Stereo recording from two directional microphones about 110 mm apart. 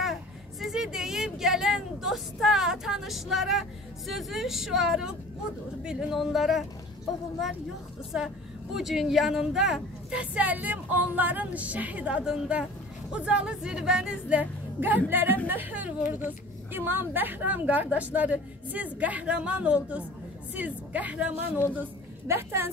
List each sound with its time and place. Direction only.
0.6 s a sound: 5° right (ahead or behind)
4.1 s speech: centre (ahead or behind)
8.1 s a woman's voice: 10° right (ahead or behind)